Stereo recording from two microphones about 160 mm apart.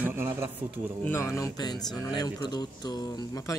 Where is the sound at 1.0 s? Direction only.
20° left (ahead or behind).